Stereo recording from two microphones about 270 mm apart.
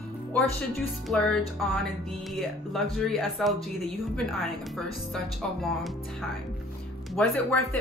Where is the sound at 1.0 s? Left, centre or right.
Centre.